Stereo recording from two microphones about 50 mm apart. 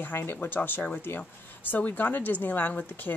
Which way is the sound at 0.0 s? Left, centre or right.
Left.